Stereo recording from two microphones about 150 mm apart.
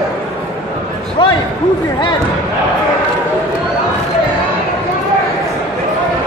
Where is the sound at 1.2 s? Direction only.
30° left (ahead or behind).